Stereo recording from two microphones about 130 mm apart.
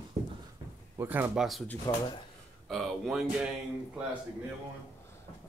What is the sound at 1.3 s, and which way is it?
Speech, centre (ahead or behind).